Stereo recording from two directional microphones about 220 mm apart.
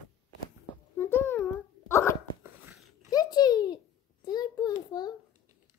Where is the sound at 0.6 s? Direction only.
10° left (ahead or behind).